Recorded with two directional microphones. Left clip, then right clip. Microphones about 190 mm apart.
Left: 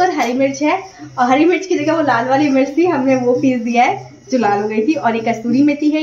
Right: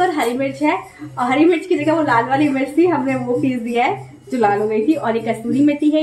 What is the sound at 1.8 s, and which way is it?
A woman's voice, 15° left (ahead or behind).